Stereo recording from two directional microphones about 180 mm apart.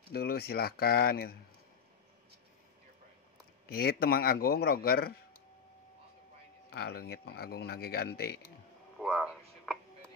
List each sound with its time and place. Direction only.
0.1 s speech: 60° left (ahead or behind)
3.7 s speech: 55° left (ahead or behind)
6.7 s speech: 60° left (ahead or behind)
8.9 s a sound: centre (ahead or behind)